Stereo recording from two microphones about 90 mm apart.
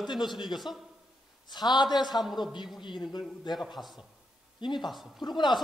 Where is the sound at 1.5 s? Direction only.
50° left (ahead or behind).